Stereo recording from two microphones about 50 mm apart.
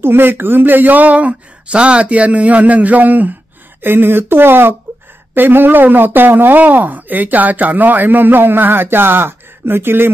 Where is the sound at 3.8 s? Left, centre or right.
Right.